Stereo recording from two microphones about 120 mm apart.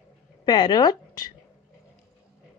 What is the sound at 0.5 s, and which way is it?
Speech, 35° left (ahead or behind).